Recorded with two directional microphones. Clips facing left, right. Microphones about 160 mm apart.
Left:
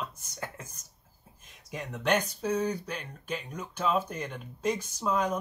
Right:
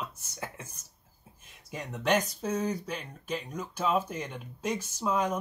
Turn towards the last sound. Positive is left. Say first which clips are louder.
# even
turn(degrees=-5)  # may be behind; listen again after turning